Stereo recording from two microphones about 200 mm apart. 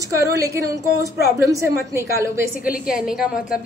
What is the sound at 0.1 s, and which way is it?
A woman's voice, 15° right (ahead or behind).